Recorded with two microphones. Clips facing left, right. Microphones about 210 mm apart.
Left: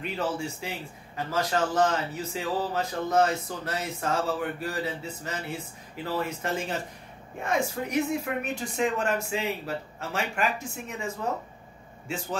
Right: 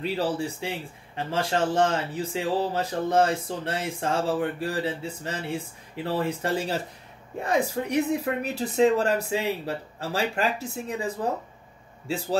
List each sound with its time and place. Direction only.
0.0 s a man's voice: 35° right (ahead or behind)